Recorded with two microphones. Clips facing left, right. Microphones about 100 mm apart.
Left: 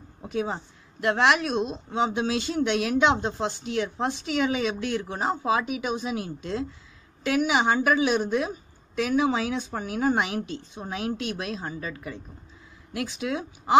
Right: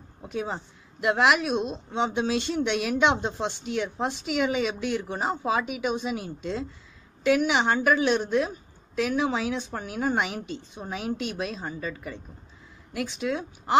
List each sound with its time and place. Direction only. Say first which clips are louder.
0.2 s speech: left 2 dB; centre (ahead or behind)